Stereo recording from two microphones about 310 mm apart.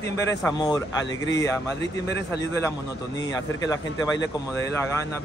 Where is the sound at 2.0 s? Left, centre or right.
Left.